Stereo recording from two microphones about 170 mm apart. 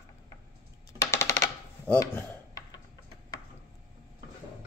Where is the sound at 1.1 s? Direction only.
15° left (ahead or behind).